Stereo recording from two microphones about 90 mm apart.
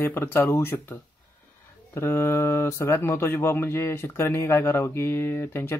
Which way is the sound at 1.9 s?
30° left (ahead or behind).